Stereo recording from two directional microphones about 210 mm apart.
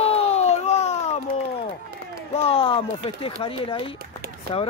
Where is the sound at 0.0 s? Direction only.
30° left (ahead or behind).